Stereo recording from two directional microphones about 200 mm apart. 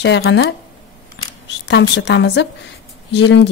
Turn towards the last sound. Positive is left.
turn(degrees=60)  # may be behind; listen again after turning